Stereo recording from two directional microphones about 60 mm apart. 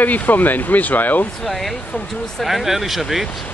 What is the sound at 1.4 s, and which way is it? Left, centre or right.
Speech, centre.